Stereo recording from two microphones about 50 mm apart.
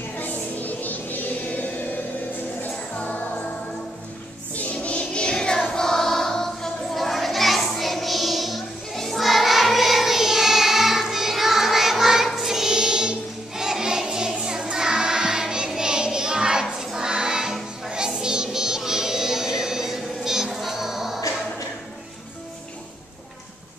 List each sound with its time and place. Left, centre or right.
0.2 s music: left
2.6 s music: left
4.6 s music: left
5.7 s a sound: centre
12.3 s music: centre